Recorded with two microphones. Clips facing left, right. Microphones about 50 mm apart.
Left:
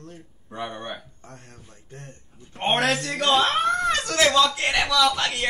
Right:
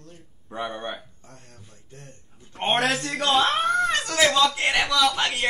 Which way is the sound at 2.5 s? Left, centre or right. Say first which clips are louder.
Left 1 dB; centre.